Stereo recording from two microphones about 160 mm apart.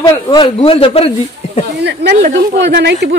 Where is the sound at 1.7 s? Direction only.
90° right.